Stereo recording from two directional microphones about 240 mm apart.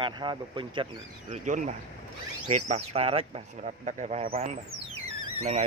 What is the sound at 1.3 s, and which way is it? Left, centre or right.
Speech, right.